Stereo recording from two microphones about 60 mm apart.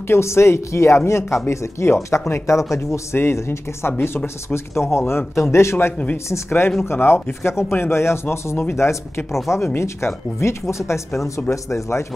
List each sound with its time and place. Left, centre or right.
0.1 s speech: left